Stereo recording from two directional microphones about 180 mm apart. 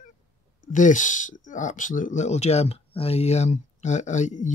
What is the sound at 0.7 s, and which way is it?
Speech, 45° left (ahead or behind).